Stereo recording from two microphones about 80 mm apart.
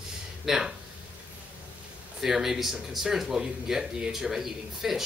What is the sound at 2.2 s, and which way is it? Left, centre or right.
Speech, centre.